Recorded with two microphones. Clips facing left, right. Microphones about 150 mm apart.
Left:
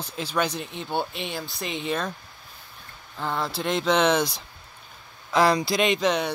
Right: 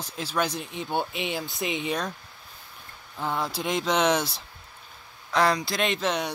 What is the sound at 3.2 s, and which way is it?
Speech, 10° right (ahead or behind).